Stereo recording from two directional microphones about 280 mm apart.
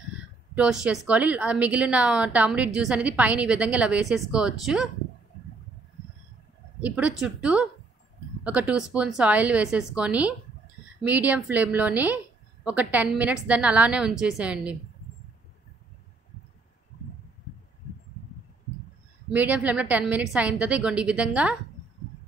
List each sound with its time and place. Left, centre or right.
0.6 s a woman's voice: centre
6.8 s a woman's voice: centre
19.3 s a woman's voice: centre